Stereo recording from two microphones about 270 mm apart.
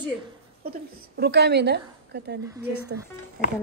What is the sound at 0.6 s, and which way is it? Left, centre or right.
A woman's voice, right.